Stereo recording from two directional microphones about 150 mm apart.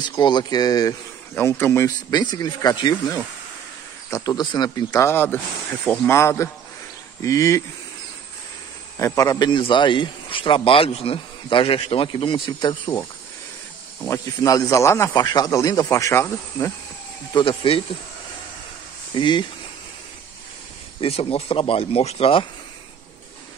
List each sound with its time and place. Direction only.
0.2 s speech: 30° left (ahead or behind)
8.9 s a man's voice: 20° left (ahead or behind)
14.0 s speech: 20° left (ahead or behind)
17.3 s a man's voice: 30° left (ahead or behind)
19.1 s a man's voice: 30° left (ahead or behind)
21.0 s a man's voice: 40° left (ahead or behind)